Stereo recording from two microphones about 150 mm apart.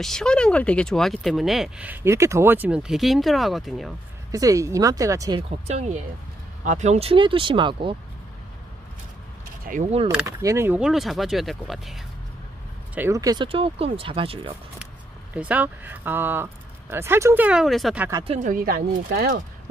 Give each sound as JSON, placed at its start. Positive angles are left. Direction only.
{"t": 0.0, "sound": "speech", "side_deg": 5}
{"t": 4.3, "sound": "speech", "side_deg": -20}
{"t": 5.5, "sound": "speech", "side_deg": -50}
{"t": 9.7, "sound": "speech", "side_deg": -55}
{"t": 10.2, "sound": "speech", "side_deg": -20}
{"t": 10.8, "sound": "speech", "side_deg": 0}
{"t": 12.9, "sound": "speech", "side_deg": -15}
{"t": 13.5, "sound": "speech", "side_deg": -40}
{"t": 15.3, "sound": "speech", "side_deg": -10}
{"t": 18.4, "sound": "speech", "side_deg": -70}